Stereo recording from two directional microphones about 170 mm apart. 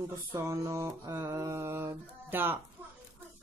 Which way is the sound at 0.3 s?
20° right (ahead or behind).